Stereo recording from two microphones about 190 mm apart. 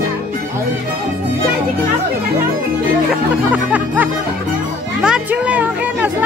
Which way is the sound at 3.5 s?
10° right (ahead or behind).